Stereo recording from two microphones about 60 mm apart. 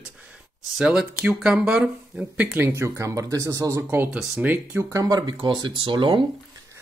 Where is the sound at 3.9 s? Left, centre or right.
Right.